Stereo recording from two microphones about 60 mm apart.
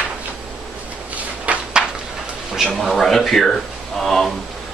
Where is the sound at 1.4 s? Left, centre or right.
Centre.